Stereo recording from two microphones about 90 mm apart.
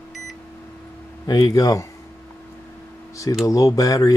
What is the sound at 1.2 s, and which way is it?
Speech, 45° left (ahead or behind).